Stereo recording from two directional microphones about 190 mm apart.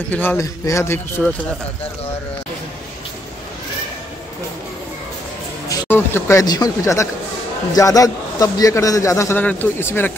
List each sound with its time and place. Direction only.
0.1 s a man's voice: 10° left (ahead or behind)
5.7 s a man's voice: 10° left (ahead or behind)